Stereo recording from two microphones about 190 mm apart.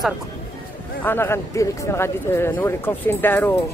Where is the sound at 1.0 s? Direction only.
10° left (ahead or behind).